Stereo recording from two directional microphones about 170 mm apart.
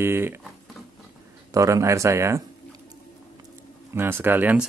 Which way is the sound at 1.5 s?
20° right (ahead or behind).